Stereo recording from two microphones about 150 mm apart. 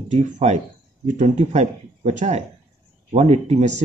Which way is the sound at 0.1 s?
50° right (ahead or behind).